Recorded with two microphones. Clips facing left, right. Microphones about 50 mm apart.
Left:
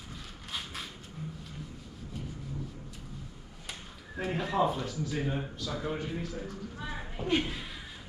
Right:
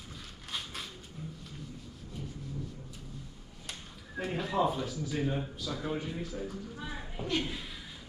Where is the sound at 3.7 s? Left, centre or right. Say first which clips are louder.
Left 1 dB; centre.